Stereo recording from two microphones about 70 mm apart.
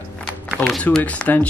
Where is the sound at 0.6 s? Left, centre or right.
Left.